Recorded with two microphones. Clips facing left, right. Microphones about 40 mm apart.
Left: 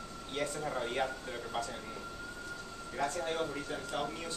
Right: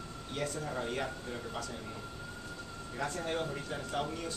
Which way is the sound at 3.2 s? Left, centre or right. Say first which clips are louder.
Even; centre.